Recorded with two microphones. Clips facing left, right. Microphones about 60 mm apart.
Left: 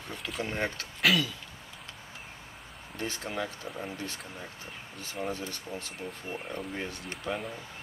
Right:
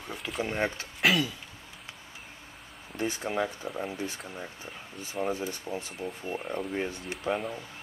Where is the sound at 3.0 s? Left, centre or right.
Centre.